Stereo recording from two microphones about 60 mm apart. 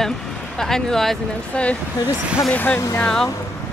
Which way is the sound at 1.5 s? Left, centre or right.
Left.